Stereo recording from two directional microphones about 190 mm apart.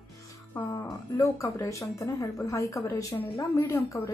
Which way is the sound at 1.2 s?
15° left (ahead or behind).